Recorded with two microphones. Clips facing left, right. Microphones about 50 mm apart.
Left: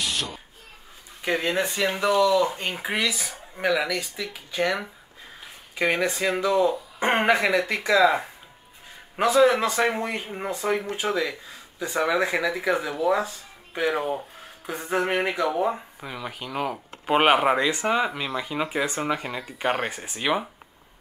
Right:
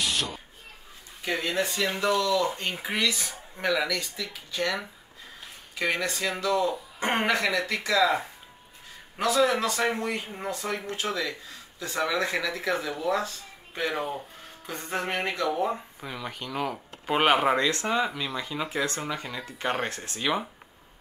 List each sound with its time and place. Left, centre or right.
0.0 s a sound: centre
1.2 s speech: left
9.1 s speech: left